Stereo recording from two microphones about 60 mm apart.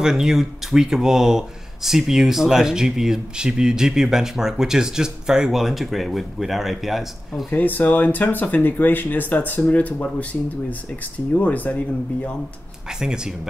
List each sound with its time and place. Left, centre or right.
0.0 s speech: centre
7.5 s speech: left
11.3 s speech: left
13.0 s speech: centre